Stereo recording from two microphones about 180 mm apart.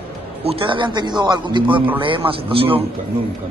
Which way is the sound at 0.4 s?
30° right (ahead or behind).